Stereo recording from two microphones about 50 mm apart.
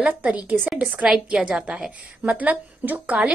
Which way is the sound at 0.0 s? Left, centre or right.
Right.